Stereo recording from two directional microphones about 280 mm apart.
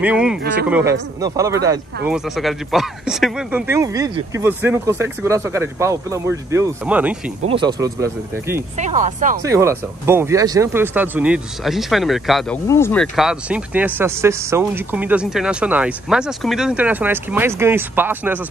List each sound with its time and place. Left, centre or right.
0.0 s speech: centre
7.4 s speech: centre
8.7 s speech: right
9.4 s speech: centre